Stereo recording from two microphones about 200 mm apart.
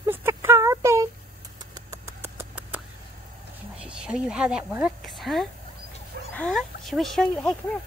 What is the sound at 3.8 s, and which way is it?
Speech, 5° right (ahead or behind).